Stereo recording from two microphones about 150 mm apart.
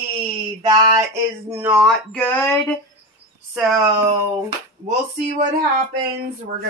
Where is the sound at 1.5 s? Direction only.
10° right (ahead or behind).